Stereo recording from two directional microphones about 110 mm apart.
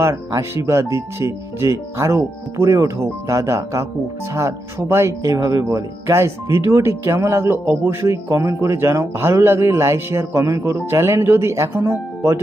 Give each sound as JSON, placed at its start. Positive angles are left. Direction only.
{"t": 0.0, "sound": "speech", "side_deg": -25}